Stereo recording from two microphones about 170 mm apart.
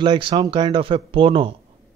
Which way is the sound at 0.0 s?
30° right (ahead or behind).